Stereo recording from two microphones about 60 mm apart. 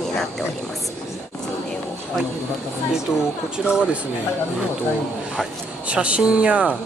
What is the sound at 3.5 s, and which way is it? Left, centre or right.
Speech, centre.